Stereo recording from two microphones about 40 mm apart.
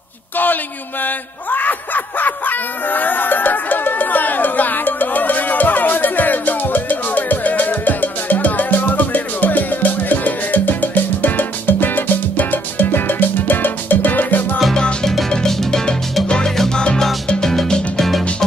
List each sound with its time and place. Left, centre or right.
1.0 s a sound: left
15.0 s music: centre
16.4 s salsa music: centre
17.3 s music: centre